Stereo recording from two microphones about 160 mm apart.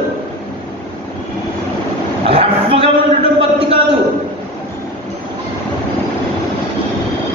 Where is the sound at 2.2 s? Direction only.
35° right (ahead or behind).